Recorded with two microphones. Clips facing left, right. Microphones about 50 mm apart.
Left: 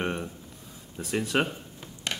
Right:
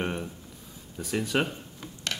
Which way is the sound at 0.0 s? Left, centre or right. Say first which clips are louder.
Left 1 dB; centre.